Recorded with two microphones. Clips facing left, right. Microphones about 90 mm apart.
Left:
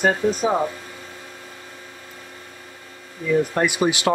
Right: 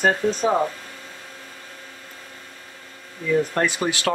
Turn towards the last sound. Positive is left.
turn(degrees=20)  # may be behind; listen again after turning